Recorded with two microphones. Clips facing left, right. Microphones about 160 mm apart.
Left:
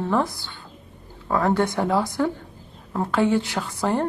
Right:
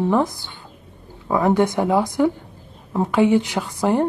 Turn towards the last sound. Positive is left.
turn(degrees=-15)  # may be behind; listen again after turning